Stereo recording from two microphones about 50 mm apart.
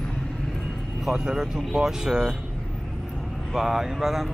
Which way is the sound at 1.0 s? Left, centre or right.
Centre.